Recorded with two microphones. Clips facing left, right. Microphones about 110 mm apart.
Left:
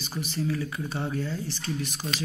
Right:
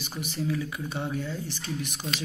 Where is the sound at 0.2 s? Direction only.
15° right (ahead or behind).